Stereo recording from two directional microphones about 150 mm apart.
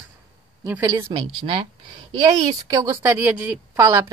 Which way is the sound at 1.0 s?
35° right (ahead or behind).